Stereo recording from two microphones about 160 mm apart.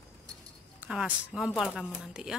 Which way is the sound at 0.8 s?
5° right (ahead or behind).